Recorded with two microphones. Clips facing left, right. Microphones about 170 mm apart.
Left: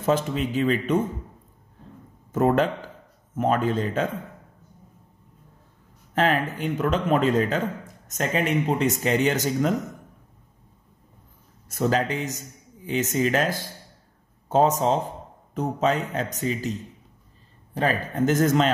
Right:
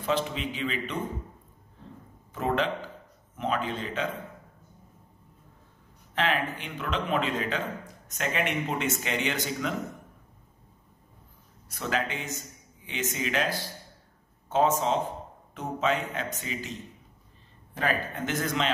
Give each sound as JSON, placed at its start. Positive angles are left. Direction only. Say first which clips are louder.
{"t": 0.0, "sound": "a man's voice", "louder": "left 6 dB", "side_deg": 45}
{"t": 2.3, "sound": "a man's voice", "louder": "left 7 dB", "side_deg": 45}
{"t": 6.1, "sound": "a man's voice", "louder": "left 5 dB", "side_deg": 40}
{"t": 11.7, "sound": "speech", "louder": "left 7 dB", "side_deg": 40}